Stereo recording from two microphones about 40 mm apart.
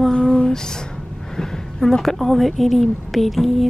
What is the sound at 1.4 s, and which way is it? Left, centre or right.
A woman's voice, centre.